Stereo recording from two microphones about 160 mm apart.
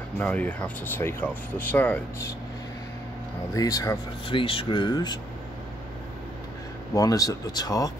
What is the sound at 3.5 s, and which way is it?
Speech, 20° left (ahead or behind).